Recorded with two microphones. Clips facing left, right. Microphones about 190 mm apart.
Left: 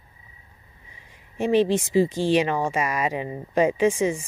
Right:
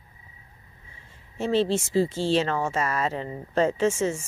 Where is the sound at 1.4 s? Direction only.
15° left (ahead or behind).